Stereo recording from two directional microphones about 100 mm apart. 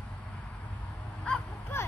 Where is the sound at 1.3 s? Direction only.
10° left (ahead or behind).